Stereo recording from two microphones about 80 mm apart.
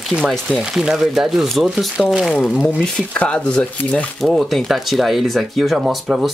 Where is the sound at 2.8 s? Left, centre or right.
Centre.